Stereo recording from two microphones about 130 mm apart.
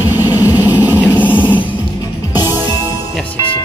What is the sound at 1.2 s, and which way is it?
Music, 15° left (ahead or behind).